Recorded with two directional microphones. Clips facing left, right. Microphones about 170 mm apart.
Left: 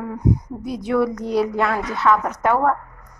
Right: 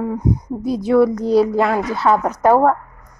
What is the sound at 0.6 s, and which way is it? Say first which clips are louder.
A woman's voice: right 7 dB; 30° right (ahead or behind).